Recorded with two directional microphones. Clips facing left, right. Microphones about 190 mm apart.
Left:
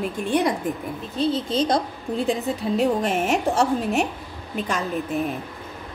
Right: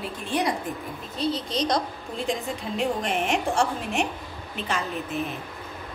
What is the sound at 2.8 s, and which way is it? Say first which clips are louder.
Speech: left 3 dB; 40° left (ahead or behind).